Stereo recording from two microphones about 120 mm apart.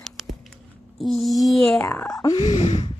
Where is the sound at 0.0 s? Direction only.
Centre (ahead or behind).